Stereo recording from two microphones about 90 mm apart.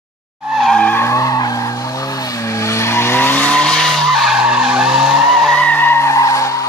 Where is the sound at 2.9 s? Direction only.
25° left (ahead or behind); by 5.1 s 5° right (ahead or behind).